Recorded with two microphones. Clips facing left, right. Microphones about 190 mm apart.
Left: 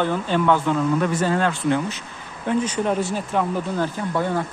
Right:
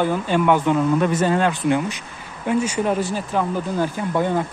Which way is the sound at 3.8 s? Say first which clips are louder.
Right 4 dB; 15° right (ahead or behind).